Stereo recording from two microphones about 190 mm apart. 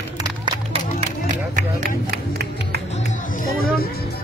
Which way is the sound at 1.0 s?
45° right (ahead or behind).